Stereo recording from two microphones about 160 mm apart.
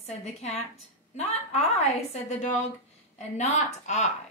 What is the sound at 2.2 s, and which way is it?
A woman's voice, 45° left (ahead or behind).